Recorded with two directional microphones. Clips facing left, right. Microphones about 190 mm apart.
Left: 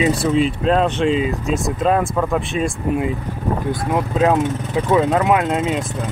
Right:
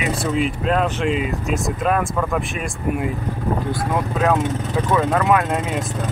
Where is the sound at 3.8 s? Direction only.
20° left (ahead or behind).